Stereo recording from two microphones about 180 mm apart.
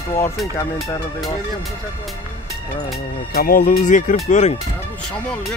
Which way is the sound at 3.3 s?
50° left (ahead or behind).